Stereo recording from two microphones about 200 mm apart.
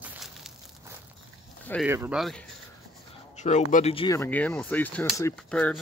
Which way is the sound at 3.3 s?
35° left (ahead or behind).